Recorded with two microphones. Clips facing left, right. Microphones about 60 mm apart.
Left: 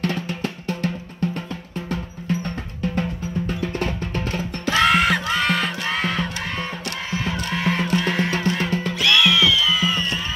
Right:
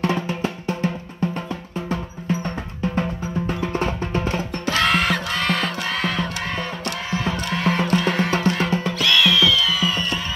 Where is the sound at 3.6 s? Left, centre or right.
Right.